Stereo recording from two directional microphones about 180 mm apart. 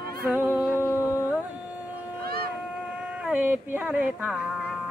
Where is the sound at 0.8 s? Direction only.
15° left (ahead or behind).